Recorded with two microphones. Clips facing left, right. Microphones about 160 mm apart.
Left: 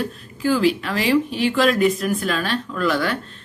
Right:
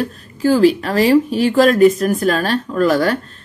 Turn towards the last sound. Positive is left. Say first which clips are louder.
# right 7 dB
turn(degrees=-40)  # may be behind; listen again after turning